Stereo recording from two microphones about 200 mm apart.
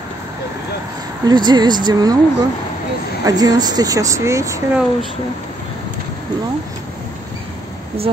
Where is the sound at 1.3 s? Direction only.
20° right (ahead or behind).